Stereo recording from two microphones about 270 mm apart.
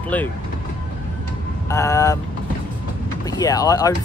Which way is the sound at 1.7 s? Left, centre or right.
Centre.